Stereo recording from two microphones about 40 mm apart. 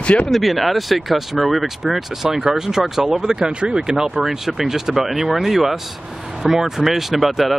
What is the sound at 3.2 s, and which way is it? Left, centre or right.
Speech, centre.